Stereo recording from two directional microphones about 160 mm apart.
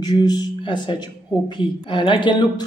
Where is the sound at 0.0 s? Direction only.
25° left (ahead or behind).